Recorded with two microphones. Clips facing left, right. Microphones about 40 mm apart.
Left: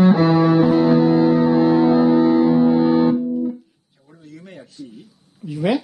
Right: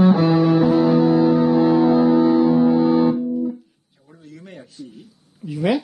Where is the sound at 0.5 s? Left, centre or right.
Left.